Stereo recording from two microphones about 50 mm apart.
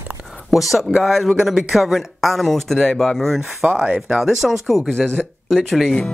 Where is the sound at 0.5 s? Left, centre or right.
Centre.